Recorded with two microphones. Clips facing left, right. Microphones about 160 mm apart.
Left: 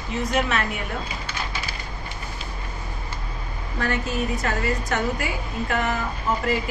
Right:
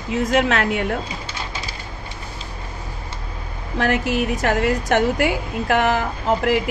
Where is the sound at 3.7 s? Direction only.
90° right.